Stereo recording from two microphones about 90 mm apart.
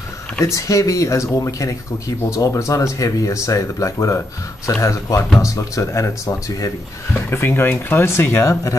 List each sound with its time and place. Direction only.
0.4 s speech: 35° left (ahead or behind)
7.2 s speech: 25° left (ahead or behind)